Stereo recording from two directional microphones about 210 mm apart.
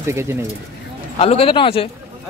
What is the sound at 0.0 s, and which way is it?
Speech, 15° right (ahead or behind).